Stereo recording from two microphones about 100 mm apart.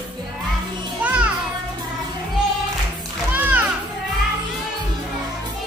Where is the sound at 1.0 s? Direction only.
15° right (ahead or behind).